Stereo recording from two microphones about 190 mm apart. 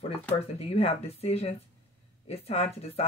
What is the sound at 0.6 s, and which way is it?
Speech, 30° left (ahead or behind).